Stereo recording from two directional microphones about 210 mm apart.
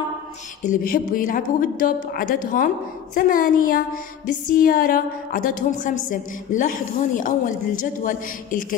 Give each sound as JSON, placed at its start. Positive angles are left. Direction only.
{"t": 0.7, "sound": "a woman's voice", "side_deg": 40}
{"t": 4.3, "sound": "a sound", "side_deg": 40}
{"t": 5.7, "sound": "a woman's voice", "side_deg": 40}